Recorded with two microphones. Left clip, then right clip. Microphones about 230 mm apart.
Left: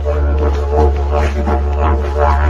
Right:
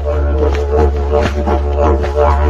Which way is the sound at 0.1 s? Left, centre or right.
Right.